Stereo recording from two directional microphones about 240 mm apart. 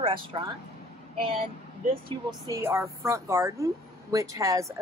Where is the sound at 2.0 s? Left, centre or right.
Centre.